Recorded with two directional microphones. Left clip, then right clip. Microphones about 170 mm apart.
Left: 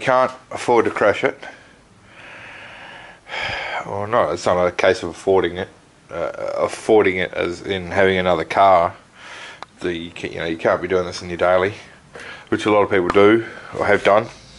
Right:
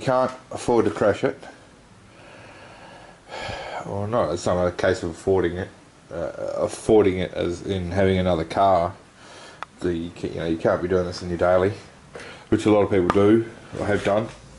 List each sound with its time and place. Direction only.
0.0 s speech: 15° left (ahead or behind)
2.2 s a sound: 15° left (ahead or behind)
4.0 s speech: 20° left (ahead or behind)
5.3 s speech: 35° left (ahead or behind)
6.1 s speech: 20° left (ahead or behind)
12.2 s a sound: 10° left (ahead or behind)
13.7 s speech: 25° left (ahead or behind)